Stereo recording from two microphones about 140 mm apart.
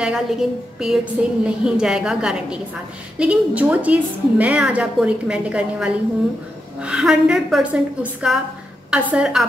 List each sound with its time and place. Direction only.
0.0 s a woman's voice: 5° right (ahead or behind)